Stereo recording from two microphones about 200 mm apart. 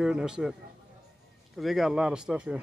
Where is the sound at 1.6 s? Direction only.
Centre (ahead or behind).